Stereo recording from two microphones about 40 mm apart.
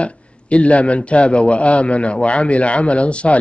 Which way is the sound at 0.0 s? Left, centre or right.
Left.